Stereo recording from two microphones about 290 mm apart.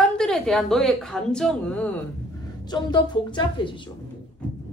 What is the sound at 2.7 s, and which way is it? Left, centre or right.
A woman's voice, centre.